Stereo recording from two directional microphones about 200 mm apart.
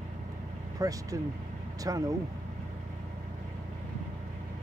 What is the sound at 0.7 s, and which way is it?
Speech, 15° right (ahead or behind).